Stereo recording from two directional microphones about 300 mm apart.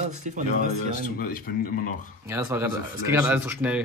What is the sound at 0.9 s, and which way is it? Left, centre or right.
Speech, left.